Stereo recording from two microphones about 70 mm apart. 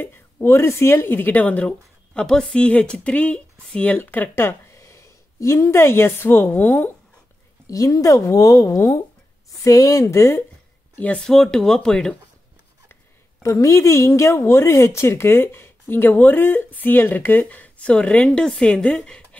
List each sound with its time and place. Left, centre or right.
0.0 s a woman's voice: left
7.6 s speech: left
11.0 s speech: centre
11.2 s speech: centre
13.4 s a woman's voice: left; by 19.2 s centre